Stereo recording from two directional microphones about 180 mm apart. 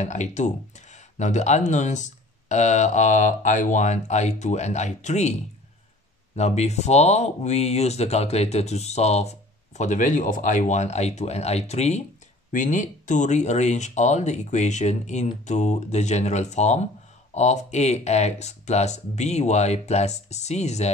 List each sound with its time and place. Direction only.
0.0 s speech: 40° left (ahead or behind)